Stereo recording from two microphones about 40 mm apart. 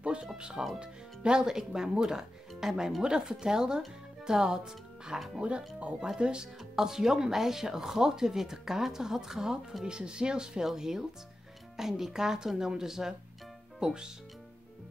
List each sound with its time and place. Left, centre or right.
0.0 s music: right
0.4 s speech: right
6.7 s speech: centre